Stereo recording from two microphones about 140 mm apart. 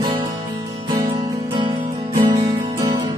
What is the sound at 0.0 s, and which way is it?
Music, 30° right (ahead or behind).